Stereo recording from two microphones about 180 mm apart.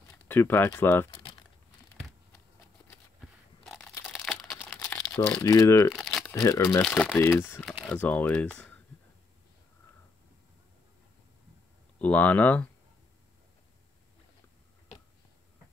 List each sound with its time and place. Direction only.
0.3 s speech: 10° left (ahead or behind)
4.1 s crumpling: centre (ahead or behind); by 5.9 s 20° left (ahead or behind)
5.9 s crumpling: centre (ahead or behind)
6.2 s speech: 15° left (ahead or behind)
6.8 s speech: 5° left (ahead or behind)
7.6 s speech: centre (ahead or behind)
12.0 s speech: 10° left (ahead or behind)